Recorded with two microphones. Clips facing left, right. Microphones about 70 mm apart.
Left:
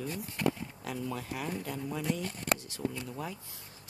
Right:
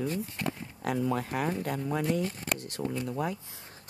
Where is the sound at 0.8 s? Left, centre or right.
Right.